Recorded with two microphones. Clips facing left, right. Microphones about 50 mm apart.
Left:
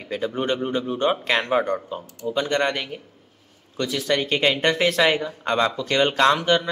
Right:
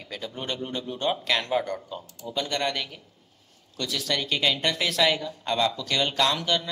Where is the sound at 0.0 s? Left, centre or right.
Left.